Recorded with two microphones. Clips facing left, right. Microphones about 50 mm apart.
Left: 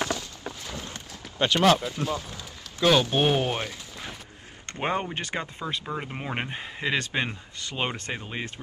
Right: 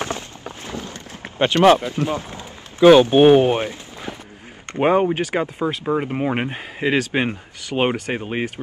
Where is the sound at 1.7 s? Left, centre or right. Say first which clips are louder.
Right 6 dB; right.